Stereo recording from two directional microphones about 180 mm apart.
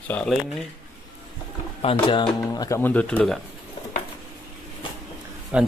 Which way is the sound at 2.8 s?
10° left (ahead or behind).